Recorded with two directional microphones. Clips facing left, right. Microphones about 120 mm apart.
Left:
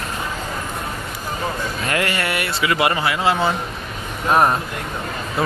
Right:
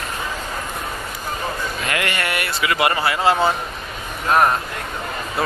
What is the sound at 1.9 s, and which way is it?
A man's voice, 30° left (ahead or behind).